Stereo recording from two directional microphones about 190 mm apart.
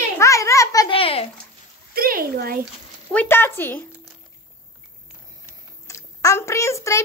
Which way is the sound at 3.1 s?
10° left (ahead or behind).